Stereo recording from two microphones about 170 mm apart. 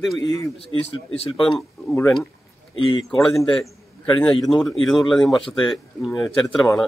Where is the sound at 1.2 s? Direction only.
30° left (ahead or behind).